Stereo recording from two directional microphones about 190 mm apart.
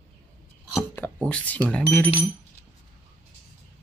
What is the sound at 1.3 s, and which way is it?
Speech, 5° left (ahead or behind).